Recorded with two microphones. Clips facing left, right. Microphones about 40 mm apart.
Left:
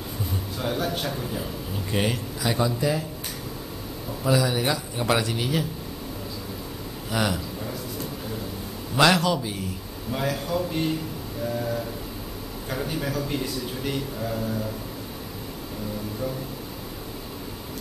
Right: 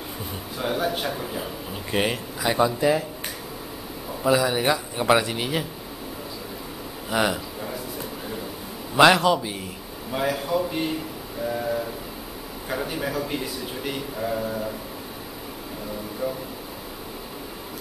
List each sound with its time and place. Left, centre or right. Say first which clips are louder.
0.6 s a man's voice: right 3 dB; centre
4.2 s a man's voice: right 2 dB; centre
7.1 s a sound: right 3 dB; centre
8.9 s a man's voice: right 4 dB; right
11.4 s a sound: right 2 dB; centre
12.6 s a man's voice: right 1 dB; centre